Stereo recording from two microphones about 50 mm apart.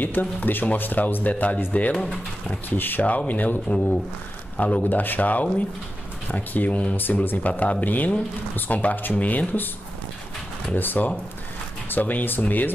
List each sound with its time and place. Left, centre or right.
0.0 s speech: left
2.8 s speech: left
3.1 s speech: left
4.8 s speech: left
7.0 s speech: left
10.7 s speech: left